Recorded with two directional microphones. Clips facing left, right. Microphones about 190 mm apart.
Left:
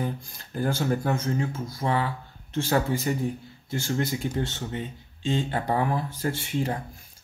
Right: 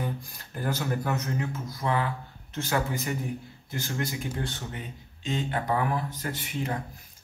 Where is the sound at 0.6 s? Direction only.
30° left (ahead or behind).